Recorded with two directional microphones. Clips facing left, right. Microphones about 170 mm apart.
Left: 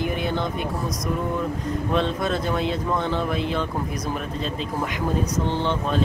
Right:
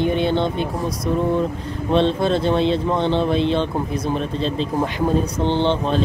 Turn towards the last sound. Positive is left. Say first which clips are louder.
# right 4 dB
turn(degrees=-30)  # may be behind; listen again after turning